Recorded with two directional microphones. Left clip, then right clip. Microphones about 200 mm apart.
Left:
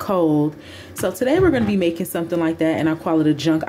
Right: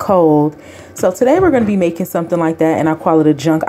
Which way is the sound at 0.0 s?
10° right (ahead or behind).